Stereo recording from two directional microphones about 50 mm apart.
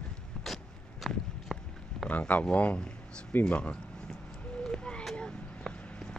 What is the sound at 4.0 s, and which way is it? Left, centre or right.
Vehicle, centre.